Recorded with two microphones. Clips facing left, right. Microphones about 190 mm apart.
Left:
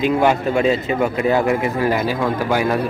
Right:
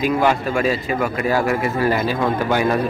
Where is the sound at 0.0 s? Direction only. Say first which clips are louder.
Left 2 dB; 20° left (ahead or behind).